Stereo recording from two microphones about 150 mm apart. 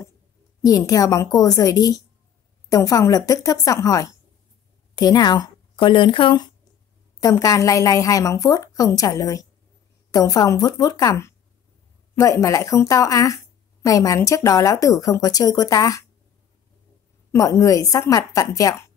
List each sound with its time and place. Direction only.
0.7 s speech: 25° left (ahead or behind)
17.3 s speech: 20° left (ahead or behind)